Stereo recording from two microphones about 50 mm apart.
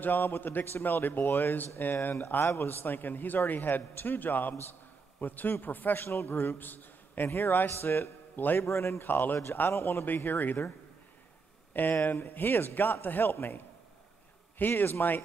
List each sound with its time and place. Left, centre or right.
0.0 s a man's voice: left
6.0 s a man's voice: left
7.2 s speech: left
8.5 s speech: left
9.0 s a man's voice: left
9.8 s speech: left
10.0 s a man's voice: left
11.7 s a man's voice: left
14.8 s a man's voice: left